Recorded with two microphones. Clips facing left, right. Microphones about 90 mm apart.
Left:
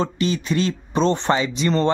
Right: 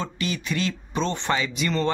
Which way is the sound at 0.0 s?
30° left (ahead or behind).